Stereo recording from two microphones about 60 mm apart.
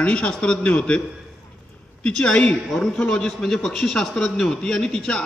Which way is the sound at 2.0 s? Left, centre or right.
Centre.